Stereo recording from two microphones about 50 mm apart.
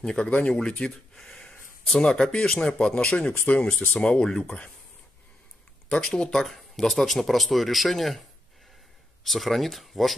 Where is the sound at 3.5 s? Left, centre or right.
Left.